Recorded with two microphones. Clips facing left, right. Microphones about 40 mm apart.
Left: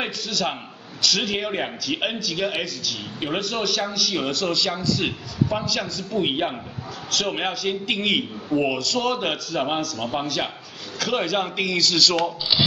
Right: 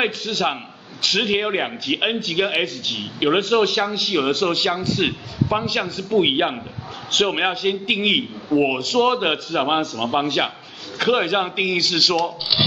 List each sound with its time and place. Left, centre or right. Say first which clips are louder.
0.0 s a man's voice: right 5 dB; right
12.5 s speech: right 1 dB; centre